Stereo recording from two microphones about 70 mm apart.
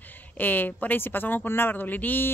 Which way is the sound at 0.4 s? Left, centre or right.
Left.